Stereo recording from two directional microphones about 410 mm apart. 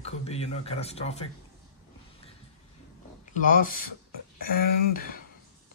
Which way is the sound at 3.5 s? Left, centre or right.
Centre.